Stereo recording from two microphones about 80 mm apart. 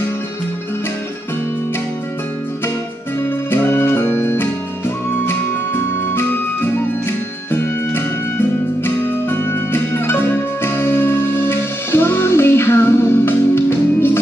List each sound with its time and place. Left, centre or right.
3.4 s music: left